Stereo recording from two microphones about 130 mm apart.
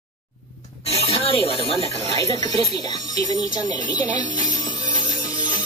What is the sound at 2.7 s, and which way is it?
Speech, 35° left (ahead or behind).